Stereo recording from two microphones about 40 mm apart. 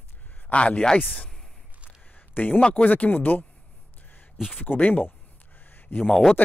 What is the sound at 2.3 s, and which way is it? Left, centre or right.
Speech, left.